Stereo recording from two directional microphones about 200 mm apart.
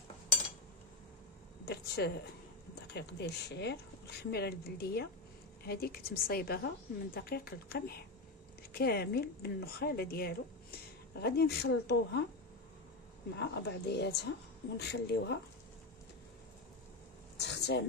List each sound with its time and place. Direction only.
1.7 s speech: 55° left (ahead or behind)
13.4 s speech: 60° left (ahead or behind)
17.4 s a sound: 60° left (ahead or behind)